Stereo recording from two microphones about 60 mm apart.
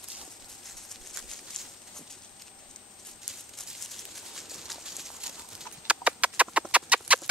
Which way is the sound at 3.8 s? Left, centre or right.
Centre.